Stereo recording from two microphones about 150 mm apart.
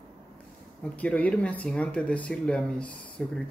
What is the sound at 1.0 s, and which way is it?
Speech, 10° left (ahead or behind).